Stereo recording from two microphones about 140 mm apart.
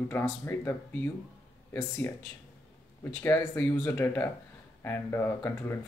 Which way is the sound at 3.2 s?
15° left (ahead or behind).